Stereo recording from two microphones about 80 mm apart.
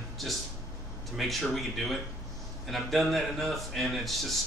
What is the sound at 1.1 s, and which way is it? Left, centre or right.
A man's voice, centre.